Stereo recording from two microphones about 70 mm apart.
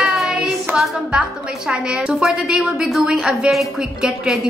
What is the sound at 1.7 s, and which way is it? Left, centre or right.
A woman's voice, centre.